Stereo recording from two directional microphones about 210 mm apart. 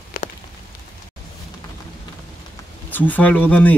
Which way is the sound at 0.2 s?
40° left (ahead or behind).